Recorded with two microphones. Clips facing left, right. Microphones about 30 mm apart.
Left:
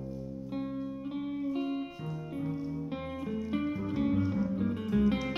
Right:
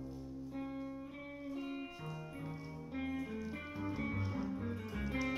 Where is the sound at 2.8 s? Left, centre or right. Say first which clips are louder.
Left 4 dB; left.